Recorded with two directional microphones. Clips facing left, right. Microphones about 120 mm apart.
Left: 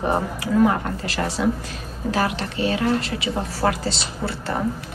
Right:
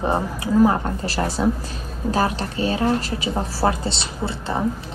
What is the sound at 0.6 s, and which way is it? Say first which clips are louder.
A woman's voice: right 1 dB; 35° right (ahead or behind).